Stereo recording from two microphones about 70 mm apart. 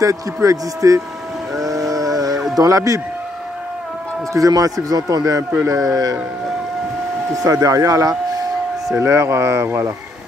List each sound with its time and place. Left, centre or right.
0.0 s speech: right
1.6 s sheep: right
2.3 s a sound: centre
2.6 s speech: right
4.3 s speech: right
7.4 s speech: right
9.0 s speech: right